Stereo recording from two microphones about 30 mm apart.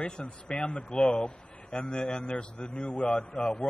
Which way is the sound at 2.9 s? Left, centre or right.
Left.